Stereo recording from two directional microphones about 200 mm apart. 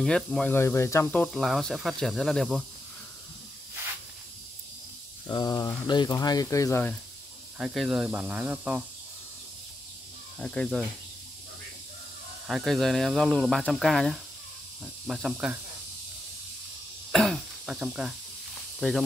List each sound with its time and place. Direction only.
0.0 s speech: 5° left (ahead or behind)
1.2 s speech: centre (ahead or behind)
5.2 s speech: 20° left (ahead or behind)
7.5 s speech: 5° right (ahead or behind)
10.4 s speech: 5° left (ahead or behind)
12.4 s speech: centre (ahead or behind)
17.1 s speech: centre (ahead or behind)